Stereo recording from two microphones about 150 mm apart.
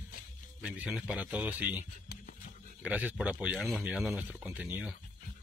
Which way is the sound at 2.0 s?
65° left (ahead or behind).